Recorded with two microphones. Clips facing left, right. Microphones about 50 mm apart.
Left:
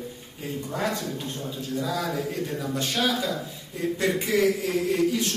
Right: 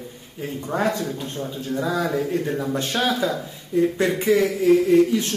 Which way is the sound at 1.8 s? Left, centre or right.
Right.